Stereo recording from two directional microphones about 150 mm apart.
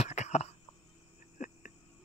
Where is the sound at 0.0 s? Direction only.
45° left (ahead or behind).